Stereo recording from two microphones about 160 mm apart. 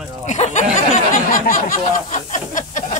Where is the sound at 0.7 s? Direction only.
55° left (ahead or behind).